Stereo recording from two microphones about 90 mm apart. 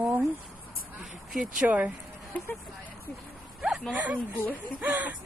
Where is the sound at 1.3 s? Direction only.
5° right (ahead or behind).